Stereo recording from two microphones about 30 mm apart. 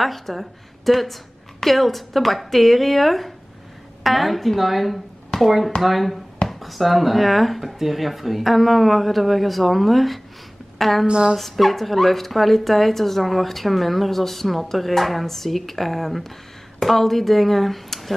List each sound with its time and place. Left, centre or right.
0.0 s speech: centre
5.3 s a sound: left
5.8 s speech: centre
11.1 s speech: right
11.3 s speech: centre